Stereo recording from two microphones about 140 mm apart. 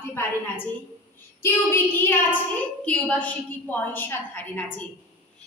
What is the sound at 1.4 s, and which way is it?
A child's voice, 15° left (ahead or behind).